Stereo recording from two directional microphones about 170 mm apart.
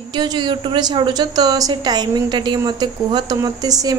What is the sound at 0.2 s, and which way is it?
A woman's voice, 25° right (ahead or behind).